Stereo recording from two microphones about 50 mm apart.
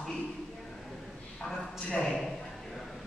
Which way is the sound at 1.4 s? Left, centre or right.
Centre.